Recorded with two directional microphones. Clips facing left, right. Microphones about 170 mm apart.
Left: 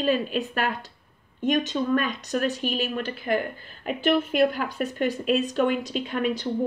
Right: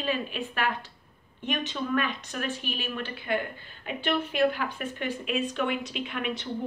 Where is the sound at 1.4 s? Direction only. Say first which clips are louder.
Left 7 dB; 40° left (ahead or behind).